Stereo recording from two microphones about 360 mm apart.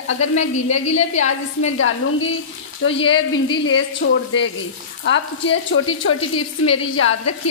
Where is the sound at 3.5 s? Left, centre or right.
Left.